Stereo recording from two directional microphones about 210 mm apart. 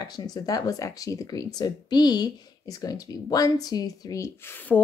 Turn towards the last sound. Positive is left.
turn(degrees=10)  # may be behind; listen again after turning